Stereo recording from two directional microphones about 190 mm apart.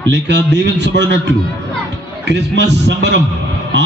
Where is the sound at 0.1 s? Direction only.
65° right (ahead or behind).